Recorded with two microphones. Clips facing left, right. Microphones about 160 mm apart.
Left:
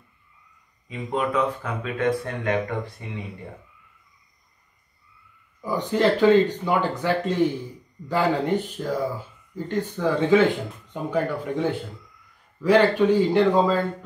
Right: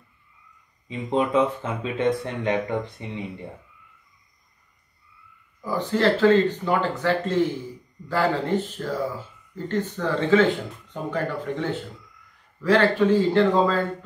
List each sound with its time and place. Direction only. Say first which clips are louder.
0.8 s speech: right 2 dB; 25° right (ahead or behind)
5.7 s speech: even; 15° left (ahead or behind)
12.6 s speech: left 1 dB; 15° left (ahead or behind)